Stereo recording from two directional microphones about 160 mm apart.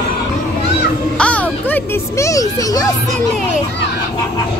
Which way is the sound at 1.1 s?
10° left (ahead or behind).